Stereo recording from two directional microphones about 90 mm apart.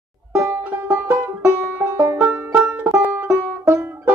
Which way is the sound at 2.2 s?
25° right (ahead or behind).